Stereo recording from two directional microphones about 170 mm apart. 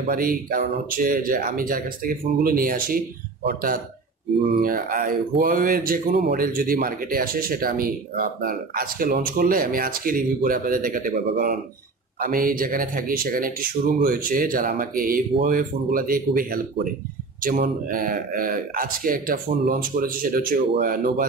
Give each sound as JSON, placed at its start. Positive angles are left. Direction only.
{"t": 0.1, "sound": "a man's voice", "side_deg": -55}